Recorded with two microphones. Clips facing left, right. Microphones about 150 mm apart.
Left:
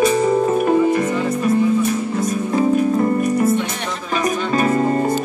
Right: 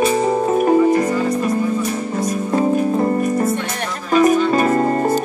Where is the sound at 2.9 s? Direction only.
30° right (ahead or behind).